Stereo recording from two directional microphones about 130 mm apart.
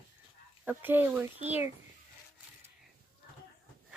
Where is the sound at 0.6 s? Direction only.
15° right (ahead or behind).